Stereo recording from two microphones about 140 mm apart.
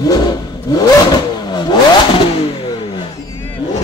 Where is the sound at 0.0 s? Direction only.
30° left (ahead or behind).